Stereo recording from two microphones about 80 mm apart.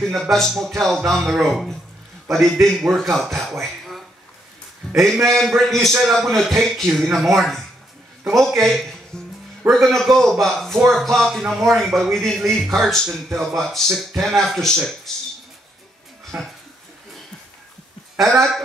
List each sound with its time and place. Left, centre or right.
0.0 s speech: centre
4.8 s a sound: centre
5.2 s speech: centre
9.1 s music: centre
9.7 s speech: centre
15.1 s a sound: centre
16.3 s speech: centre
18.2 s speech: centre